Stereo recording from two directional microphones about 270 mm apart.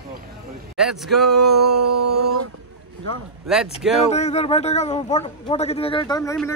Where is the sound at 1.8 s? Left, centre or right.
Right.